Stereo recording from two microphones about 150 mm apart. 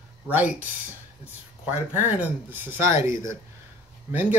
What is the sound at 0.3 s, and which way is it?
Speech, 10° right (ahead or behind).